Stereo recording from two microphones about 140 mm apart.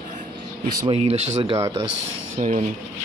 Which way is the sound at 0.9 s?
50° right (ahead or behind).